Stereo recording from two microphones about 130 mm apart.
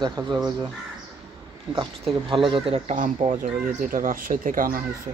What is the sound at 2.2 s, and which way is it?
Speech, 40° right (ahead or behind).